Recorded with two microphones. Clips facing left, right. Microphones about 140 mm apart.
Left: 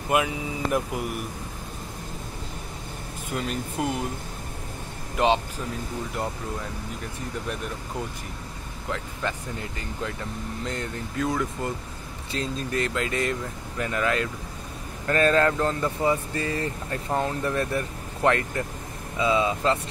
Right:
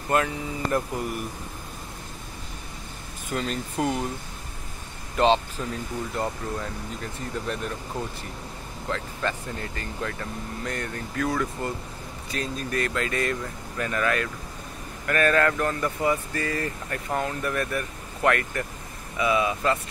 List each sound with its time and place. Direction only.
0.1 s speech: 10° left (ahead or behind)
3.3 s speech: 10° left (ahead or behind)
5.1 s speech: 15° left (ahead or behind)
8.9 s speech: 15° left (ahead or behind)